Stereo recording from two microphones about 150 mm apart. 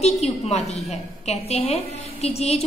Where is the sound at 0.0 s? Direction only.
45° left (ahead or behind).